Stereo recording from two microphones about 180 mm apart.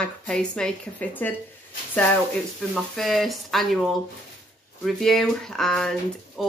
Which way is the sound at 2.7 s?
Centre (ahead or behind).